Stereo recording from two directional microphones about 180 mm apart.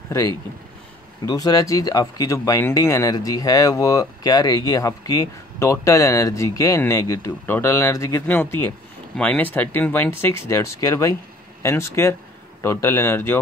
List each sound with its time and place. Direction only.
1.2 s speech: 20° left (ahead or behind)